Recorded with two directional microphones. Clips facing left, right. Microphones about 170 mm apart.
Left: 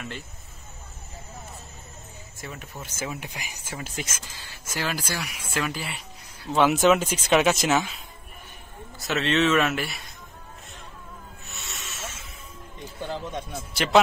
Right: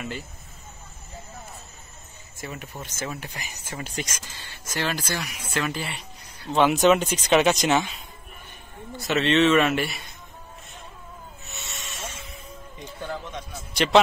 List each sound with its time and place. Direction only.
2.3 s speech: centre (ahead or behind)
11.4 s snake: centre (ahead or behind)
13.0 s speech: 25° left (ahead or behind)